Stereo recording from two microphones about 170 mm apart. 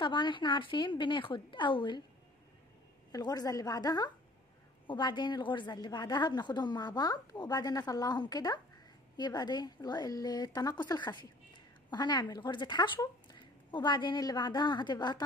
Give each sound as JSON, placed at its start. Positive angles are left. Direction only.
{"t": 0.0, "sound": "a woman's voice", "side_deg": 30}
{"t": 3.1, "sound": "a woman's voice", "side_deg": 25}